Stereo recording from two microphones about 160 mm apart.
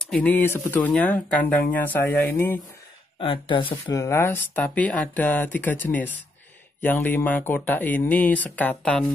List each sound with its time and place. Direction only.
0.0 s speech: 10° left (ahead or behind)
3.2 s speech: 30° left (ahead or behind)
3.8 s speech: 20° left (ahead or behind)